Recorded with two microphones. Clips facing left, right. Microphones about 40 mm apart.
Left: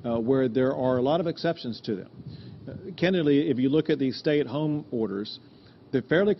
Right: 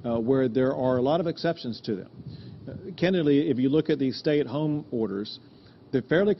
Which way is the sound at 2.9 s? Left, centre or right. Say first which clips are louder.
Even; left.